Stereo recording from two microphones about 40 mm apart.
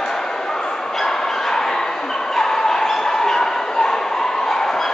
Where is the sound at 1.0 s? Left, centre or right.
Centre.